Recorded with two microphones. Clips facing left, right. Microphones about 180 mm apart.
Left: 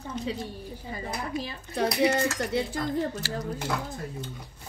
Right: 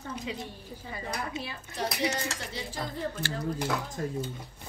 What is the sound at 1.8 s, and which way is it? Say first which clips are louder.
Speech: left 7 dB; 55° left (ahead or behind).